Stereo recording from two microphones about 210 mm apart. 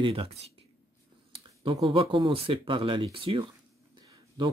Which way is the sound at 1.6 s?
25° right (ahead or behind).